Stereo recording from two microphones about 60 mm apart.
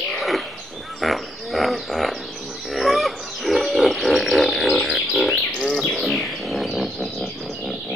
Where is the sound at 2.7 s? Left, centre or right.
Centre.